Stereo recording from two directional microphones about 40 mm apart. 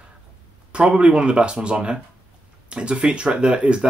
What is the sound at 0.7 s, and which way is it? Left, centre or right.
Speech, right.